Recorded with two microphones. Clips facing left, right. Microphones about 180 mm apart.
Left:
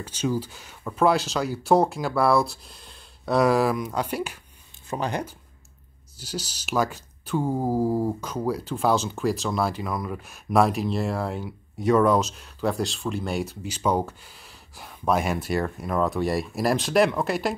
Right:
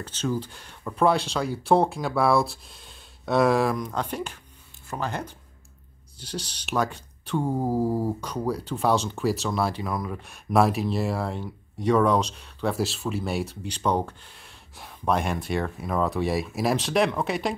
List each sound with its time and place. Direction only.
0.0 s speech: 10° left (ahead or behind)
6.1 s speech: 5° left (ahead or behind)